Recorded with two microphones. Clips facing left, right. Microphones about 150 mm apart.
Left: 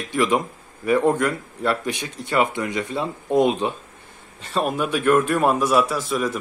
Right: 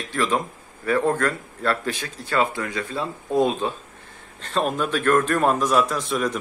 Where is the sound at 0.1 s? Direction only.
15° left (ahead or behind).